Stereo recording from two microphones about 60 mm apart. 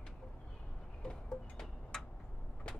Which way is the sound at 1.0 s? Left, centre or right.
Centre.